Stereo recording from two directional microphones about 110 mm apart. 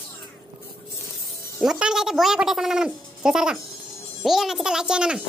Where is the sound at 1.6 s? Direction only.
5° right (ahead or behind).